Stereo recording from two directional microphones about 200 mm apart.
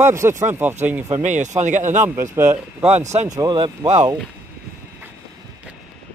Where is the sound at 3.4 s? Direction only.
20° right (ahead or behind).